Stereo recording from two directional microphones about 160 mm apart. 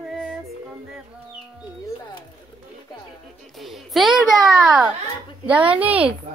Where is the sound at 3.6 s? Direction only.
Centre (ahead or behind).